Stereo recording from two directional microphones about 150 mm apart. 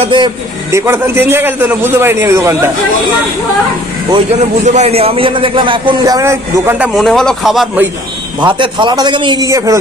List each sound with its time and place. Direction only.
0.0 s a man's voice: 30° right (ahead or behind)
0.7 s a man's voice: 20° right (ahead or behind)
4.4 s a man's voice: 50° right (ahead or behind); by 6.8 s 20° right (ahead or behind)
6.8 s a man's voice: centre (ahead or behind)
8.4 s a man's voice: 30° right (ahead or behind)